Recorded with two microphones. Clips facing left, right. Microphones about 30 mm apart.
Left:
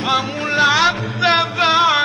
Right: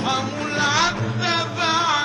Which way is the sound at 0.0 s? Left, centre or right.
Left.